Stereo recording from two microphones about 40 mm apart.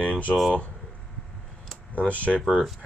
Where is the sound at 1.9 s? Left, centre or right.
Left.